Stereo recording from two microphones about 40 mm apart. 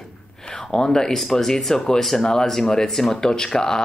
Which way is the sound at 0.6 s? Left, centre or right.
Centre.